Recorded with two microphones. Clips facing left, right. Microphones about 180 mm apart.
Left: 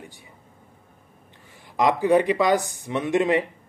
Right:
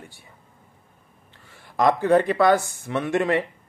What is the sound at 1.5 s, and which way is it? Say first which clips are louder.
Speech: right 1 dB; 15° left (ahead or behind).